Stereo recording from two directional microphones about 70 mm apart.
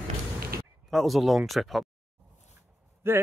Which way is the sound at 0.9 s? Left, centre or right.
Centre.